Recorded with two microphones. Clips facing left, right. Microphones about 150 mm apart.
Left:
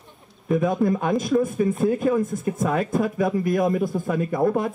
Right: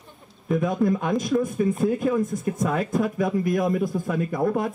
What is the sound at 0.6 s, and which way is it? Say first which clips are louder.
Speech: left 1 dB; 25° left (ahead or behind).